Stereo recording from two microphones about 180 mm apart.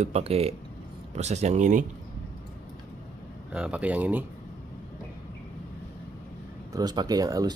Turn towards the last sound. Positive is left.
turn(degrees=-20)  # may be behind; listen again after turning